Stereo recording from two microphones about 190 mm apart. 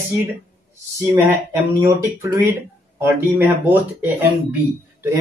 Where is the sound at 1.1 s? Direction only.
15° right (ahead or behind).